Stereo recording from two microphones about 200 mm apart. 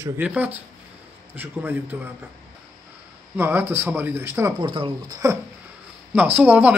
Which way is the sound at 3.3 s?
10° right (ahead or behind).